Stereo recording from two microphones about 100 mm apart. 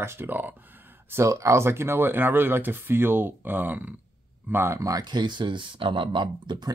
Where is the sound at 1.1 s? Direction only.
30° right (ahead or behind).